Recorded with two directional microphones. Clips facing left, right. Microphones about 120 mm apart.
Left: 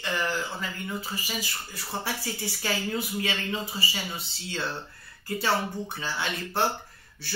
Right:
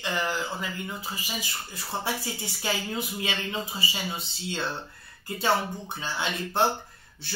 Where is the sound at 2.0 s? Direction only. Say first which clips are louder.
Right 1 dB; 20° right (ahead or behind).